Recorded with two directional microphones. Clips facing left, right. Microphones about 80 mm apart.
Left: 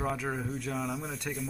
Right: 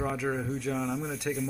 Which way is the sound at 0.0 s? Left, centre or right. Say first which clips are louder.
Right 2 dB; centre.